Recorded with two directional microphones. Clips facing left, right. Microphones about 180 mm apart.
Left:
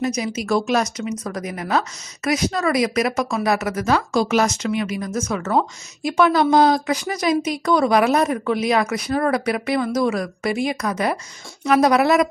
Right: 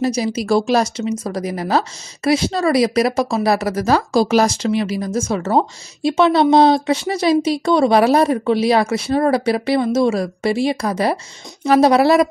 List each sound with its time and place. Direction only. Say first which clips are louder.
0.0 s speech: right 4 dB; 35° right (ahead or behind)